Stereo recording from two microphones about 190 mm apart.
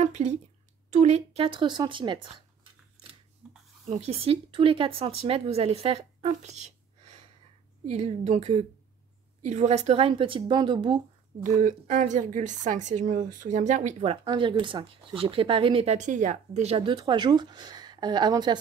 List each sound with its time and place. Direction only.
0.0 s a sound: 35° right (ahead or behind)
0.8 s speech: 35° right (ahead or behind)
3.4 s a sound: 5° right (ahead or behind)
3.9 s speech: 35° right (ahead or behind)
11.4 s speech: 40° right (ahead or behind)
14.2 s speech: 25° right (ahead or behind)